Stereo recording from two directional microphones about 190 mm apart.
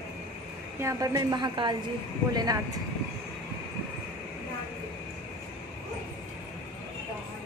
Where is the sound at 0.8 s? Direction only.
15° right (ahead or behind).